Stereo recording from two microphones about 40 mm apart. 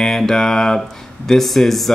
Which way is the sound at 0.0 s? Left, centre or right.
Centre.